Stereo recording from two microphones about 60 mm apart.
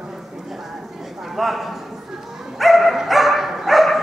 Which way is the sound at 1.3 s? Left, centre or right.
Centre.